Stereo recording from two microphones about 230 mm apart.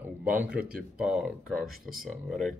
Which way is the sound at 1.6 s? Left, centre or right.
Right.